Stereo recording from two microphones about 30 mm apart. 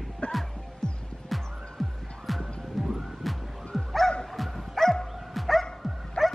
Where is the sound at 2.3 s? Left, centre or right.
Centre.